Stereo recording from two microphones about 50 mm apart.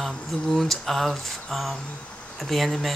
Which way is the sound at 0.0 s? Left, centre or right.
Centre.